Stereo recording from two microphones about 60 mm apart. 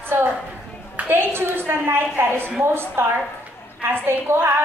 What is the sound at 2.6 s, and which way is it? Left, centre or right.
A woman's voice, right.